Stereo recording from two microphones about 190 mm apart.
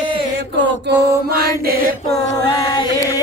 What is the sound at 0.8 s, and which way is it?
Mantra, 55° right (ahead or behind).